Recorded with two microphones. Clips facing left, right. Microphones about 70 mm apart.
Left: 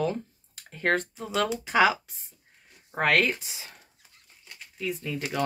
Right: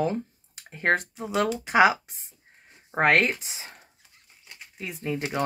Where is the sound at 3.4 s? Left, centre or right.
Right.